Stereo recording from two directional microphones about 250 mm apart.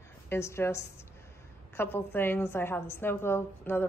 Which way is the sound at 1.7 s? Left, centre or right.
Centre.